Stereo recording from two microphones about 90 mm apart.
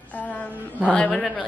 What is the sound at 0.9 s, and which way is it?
Speech, 10° left (ahead or behind).